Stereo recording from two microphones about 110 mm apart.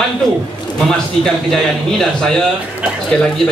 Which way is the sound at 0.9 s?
5° left (ahead or behind).